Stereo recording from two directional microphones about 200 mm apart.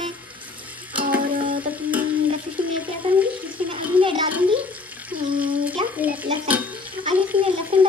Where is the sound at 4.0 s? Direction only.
25° right (ahead or behind).